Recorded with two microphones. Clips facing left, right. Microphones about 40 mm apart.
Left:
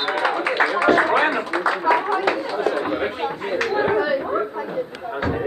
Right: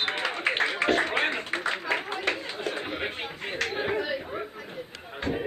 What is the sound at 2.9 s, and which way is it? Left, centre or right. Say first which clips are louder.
Chatter: left 9 dB; centre.